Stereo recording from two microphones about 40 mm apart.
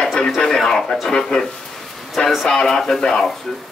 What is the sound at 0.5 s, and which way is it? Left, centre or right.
Speech, centre.